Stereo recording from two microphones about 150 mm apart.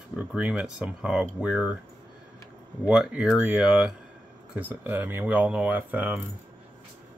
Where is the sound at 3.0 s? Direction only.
5° right (ahead or behind).